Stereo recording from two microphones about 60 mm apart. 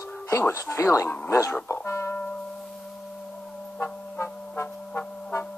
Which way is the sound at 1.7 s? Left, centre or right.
Left.